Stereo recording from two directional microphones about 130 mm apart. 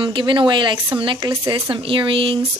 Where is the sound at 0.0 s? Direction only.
40° right (ahead or behind).